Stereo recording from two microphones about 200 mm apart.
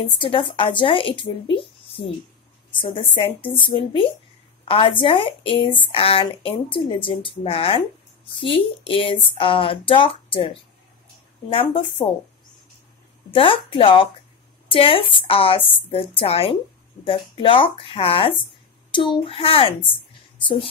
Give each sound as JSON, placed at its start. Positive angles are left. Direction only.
{"t": 0.2, "sound": "speech", "side_deg": 25}
{"t": 12.0, "sound": "speech", "side_deg": 30}
{"t": 13.3, "sound": "speech", "side_deg": 25}